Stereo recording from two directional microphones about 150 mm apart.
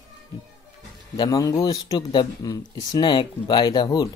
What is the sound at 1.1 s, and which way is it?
Speech, 25° left (ahead or behind).